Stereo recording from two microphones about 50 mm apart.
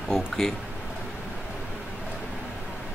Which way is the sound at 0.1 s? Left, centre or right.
Centre.